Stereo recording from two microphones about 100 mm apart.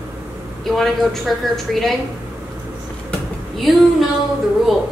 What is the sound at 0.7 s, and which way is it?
A woman's voice, 5° left (ahead or behind).